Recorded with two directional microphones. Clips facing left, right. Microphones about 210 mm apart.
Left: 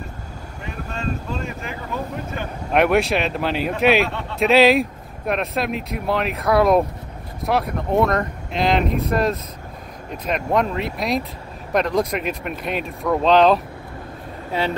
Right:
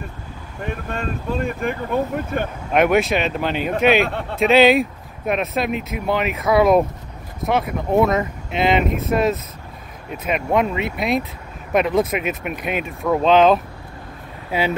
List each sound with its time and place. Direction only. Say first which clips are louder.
0.9 s speech: right 2 dB; 55° right (ahead or behind)
2.7 s speech: right 1 dB; centre (ahead or behind)
4.0 s speech: right 2 dB; 55° right (ahead or behind)
4.4 s speech: right 1 dB; centre (ahead or behind)